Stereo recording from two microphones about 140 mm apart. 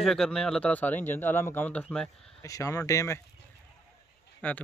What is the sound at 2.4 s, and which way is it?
Speech, 25° left (ahead or behind).